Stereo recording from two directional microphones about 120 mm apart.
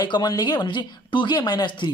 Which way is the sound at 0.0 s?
35° left (ahead or behind).